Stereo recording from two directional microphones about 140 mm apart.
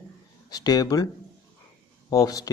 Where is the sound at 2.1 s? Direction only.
25° left (ahead or behind).